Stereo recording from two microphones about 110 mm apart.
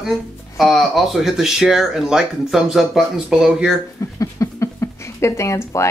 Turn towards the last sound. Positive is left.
turn(degrees=25)  # may be behind; listen again after turning